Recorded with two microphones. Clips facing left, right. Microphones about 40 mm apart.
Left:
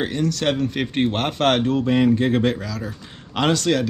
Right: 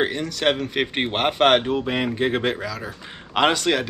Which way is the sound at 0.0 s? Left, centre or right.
Centre.